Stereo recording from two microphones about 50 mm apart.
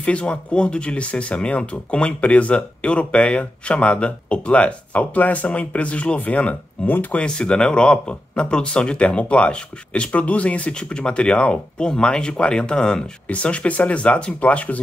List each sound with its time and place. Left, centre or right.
0.0 s speech: left
7.2 s speech: centre